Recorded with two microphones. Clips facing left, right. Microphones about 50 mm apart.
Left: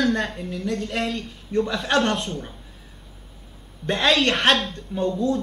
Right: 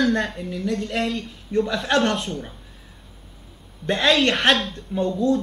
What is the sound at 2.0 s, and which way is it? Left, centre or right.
Speech, centre.